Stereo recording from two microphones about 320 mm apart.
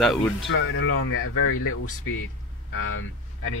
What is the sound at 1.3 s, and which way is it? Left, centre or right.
Speech, left.